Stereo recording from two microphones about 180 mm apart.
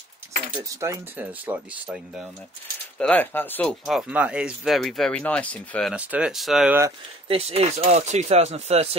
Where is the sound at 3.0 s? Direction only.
10° left (ahead or behind).